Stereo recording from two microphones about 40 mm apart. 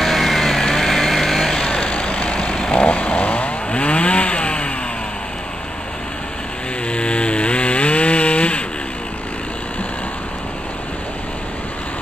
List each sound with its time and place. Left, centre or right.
0.0 s vehicle: centre
1.6 s vehicle: left
2.7 s chainsaw: left
3.7 s chainsaw: left
6.9 s chainsaw: left